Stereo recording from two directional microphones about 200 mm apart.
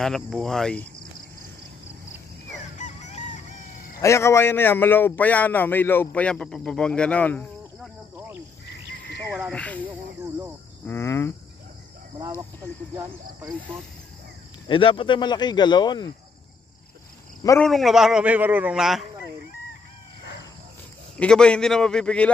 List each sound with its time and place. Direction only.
0.0 s a man's voice: centre (ahead or behind)
2.8 s chicken: 35° left (ahead or behind)
4.0 s a man's voice: 15° left (ahead or behind)
9.3 s a man's voice: 5° left (ahead or behind)
9.8 s snake: 15° right (ahead or behind)
10.9 s a man's voice: 10° left (ahead or behind)
12.2 s speech: 15° right (ahead or behind)
14.7 s speech: 25° left (ahead or behind)
17.6 s a man's voice: centre (ahead or behind)
21.2 s a man's voice: 5° left (ahead or behind)